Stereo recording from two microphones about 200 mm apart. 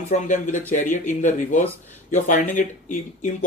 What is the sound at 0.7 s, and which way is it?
Speech, 40° left (ahead or behind).